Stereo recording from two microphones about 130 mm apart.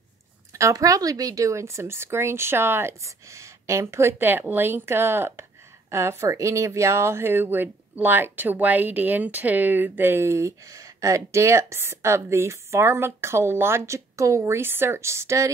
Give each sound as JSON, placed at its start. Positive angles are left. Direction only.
{"t": 0.5, "sound": "speech", "side_deg": -25}